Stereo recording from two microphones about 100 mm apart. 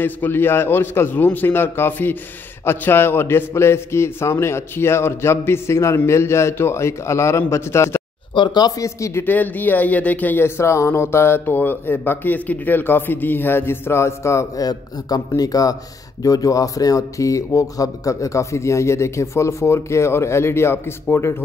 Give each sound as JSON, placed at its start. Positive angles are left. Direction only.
{"t": 0.0, "sound": "speech", "side_deg": 20}
{"t": 8.4, "sound": "speech", "side_deg": 45}
{"t": 9.2, "sound": "speech", "side_deg": 15}